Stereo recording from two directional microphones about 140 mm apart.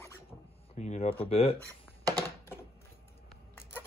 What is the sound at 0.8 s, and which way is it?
Speech, 55° left (ahead or behind).